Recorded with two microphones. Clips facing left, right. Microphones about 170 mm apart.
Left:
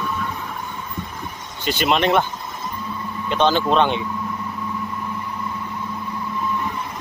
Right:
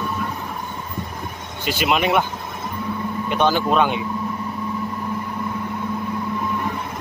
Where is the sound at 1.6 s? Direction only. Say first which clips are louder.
Left 1 dB; 5° right (ahead or behind).